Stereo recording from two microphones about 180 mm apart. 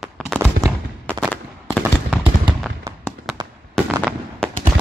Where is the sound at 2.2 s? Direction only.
25° right (ahead or behind).